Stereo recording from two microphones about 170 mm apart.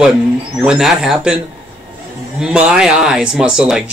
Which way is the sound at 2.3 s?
5° right (ahead or behind).